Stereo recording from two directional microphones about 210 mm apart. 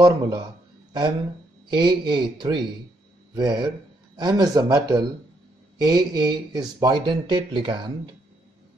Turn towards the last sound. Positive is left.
turn(degrees=-20)  # may be behind; listen again after turning